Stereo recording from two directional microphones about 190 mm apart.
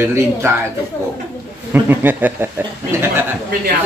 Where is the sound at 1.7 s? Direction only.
10° right (ahead or behind).